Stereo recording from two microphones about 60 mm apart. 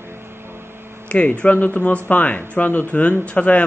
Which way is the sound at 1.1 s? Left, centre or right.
Left.